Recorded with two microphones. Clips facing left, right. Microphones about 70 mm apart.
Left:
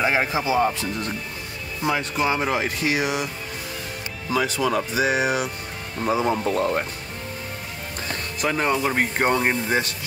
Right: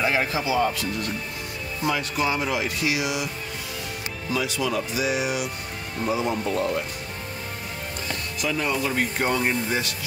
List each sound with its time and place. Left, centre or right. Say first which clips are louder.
0.0 s speech: left 2 dB; left
4.3 s speech: left 4 dB; left
8.1 s music: left 3 dB; left
8.8 s speech: left 3 dB; left